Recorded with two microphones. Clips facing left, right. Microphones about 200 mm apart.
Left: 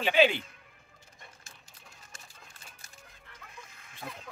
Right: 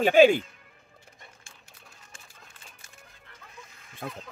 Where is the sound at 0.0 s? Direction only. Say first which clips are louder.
Right 7 dB; 45° right (ahead or behind).